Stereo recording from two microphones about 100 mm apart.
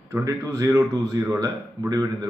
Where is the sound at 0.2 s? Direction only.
30° right (ahead or behind).